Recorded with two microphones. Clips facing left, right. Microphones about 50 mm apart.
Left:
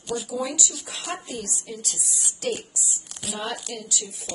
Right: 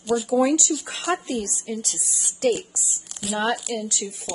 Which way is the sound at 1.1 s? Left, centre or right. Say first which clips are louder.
Right 8 dB; right.